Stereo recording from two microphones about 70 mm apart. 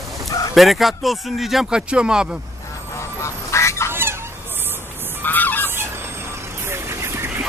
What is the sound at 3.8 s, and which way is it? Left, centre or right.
Fowl, right.